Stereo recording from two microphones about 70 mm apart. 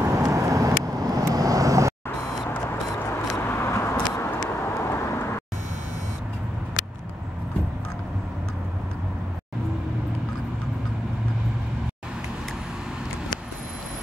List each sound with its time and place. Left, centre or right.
0.0 s vehicle: right
3.4 s vehicle: left